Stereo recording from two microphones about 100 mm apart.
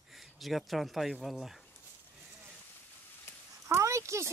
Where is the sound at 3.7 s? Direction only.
30° right (ahead or behind).